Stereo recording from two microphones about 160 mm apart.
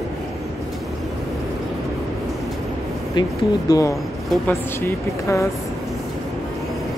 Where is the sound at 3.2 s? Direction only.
20° left (ahead or behind).